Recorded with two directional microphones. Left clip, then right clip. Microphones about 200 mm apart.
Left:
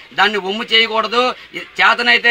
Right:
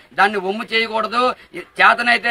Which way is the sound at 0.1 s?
15° right (ahead or behind).